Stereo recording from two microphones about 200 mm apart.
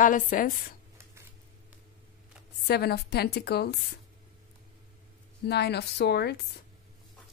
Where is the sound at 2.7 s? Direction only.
50° left (ahead or behind).